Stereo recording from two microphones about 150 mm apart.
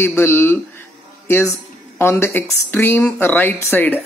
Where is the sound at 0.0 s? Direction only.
15° left (ahead or behind).